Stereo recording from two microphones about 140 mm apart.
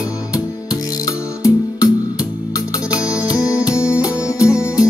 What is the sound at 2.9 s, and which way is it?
Music, 5° right (ahead or behind).